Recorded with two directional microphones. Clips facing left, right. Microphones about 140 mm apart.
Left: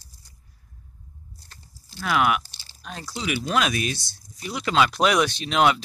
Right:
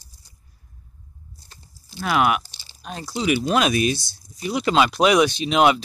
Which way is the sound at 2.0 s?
30° right (ahead or behind).